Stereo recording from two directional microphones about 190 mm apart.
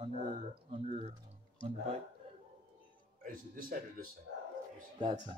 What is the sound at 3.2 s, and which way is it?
Speech, 45° right (ahead or behind).